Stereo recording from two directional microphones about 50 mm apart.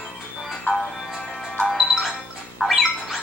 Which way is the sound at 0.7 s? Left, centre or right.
Left.